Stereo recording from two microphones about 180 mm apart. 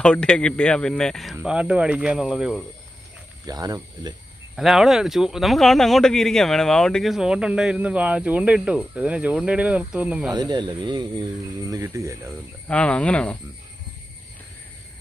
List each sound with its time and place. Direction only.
0.0 s speech: 5° left (ahead or behind)
3.4 s speech: 20° right (ahead or behind)
4.6 s speech: centre (ahead or behind)
10.3 s speech: 25° right (ahead or behind)
12.6 s speech: 5° left (ahead or behind)